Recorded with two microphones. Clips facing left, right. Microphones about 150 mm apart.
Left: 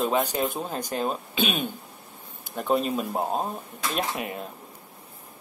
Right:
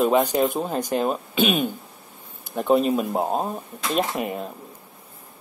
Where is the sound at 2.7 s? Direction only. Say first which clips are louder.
Right 5 dB; 5° right (ahead or behind).